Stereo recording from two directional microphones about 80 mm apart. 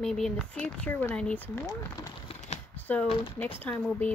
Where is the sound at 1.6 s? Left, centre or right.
Left.